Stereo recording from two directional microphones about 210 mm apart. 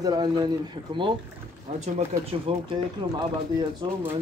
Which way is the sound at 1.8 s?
30° right (ahead or behind).